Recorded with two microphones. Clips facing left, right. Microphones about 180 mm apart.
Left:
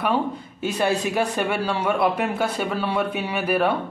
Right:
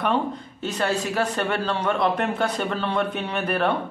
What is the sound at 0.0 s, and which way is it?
A man's voice, 10° left (ahead or behind).